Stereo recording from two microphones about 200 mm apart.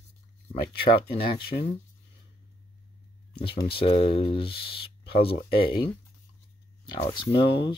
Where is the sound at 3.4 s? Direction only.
25° left (ahead or behind).